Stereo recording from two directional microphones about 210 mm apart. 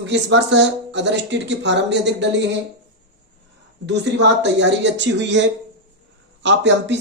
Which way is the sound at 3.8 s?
55° right (ahead or behind).